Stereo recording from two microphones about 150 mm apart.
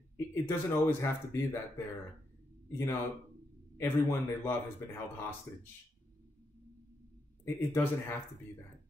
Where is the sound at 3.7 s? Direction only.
15° left (ahead or behind).